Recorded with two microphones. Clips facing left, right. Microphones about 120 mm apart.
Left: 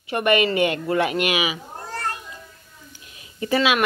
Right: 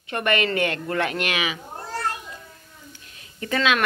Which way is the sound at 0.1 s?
10° left (ahead or behind).